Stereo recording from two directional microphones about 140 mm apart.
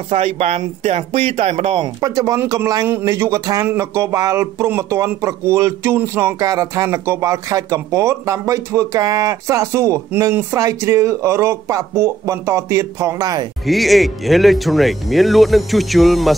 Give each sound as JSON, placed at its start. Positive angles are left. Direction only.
{"t": 0.1, "sound": "speech", "side_deg": -50}
{"t": 2.0, "sound": "speech", "side_deg": -25}
{"t": 13.7, "sound": "speech", "side_deg": 0}